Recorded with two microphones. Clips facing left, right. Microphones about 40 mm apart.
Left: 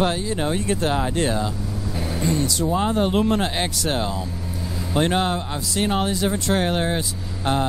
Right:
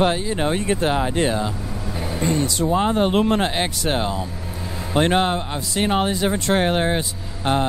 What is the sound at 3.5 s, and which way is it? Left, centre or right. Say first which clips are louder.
Speech: right 2 dB; right.